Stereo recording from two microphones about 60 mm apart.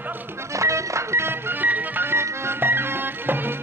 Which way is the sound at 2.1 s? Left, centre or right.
Right.